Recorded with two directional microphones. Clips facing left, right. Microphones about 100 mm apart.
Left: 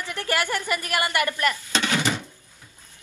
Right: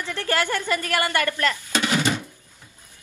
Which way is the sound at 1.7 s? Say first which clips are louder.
Right 2 dB; 15° right (ahead or behind).